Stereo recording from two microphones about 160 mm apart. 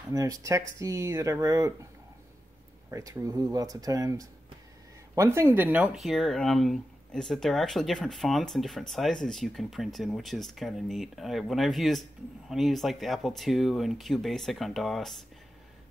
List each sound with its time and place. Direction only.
0.1 s speech: 20° right (ahead or behind)
2.9 s speech: 20° right (ahead or behind); by 15.2 s centre (ahead or behind)